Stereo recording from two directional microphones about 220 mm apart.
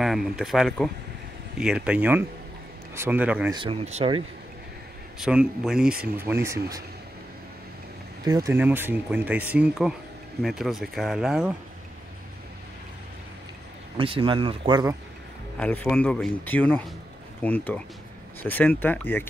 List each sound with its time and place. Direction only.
0.0 s speech: centre (ahead or behind)
3.5 s speech: 25° right (ahead or behind)
5.2 s speech: 5° right (ahead or behind)
8.3 s speech: 15° right (ahead or behind)
13.9 s speech: 25° right (ahead or behind)
15.6 s speech: 5° left (ahead or behind)